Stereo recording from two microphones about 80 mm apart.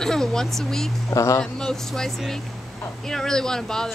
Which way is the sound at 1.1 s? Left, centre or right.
Left.